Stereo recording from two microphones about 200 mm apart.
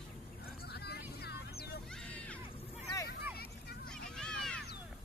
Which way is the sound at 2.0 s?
5° left (ahead or behind).